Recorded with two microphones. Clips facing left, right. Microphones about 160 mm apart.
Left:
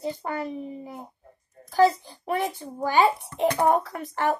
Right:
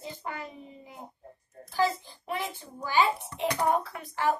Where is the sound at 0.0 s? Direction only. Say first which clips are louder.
Left 8 dB; 45° left (ahead or behind).